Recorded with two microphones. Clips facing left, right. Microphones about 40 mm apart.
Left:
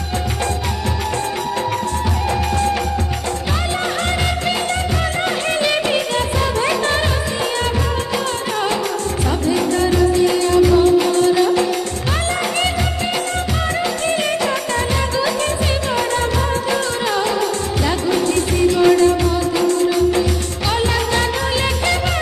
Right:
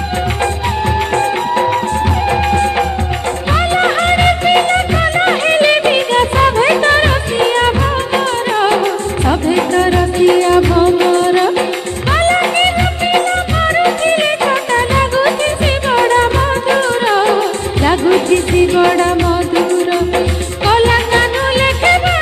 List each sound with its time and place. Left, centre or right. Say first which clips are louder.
2.2 s music: right 4 dB; right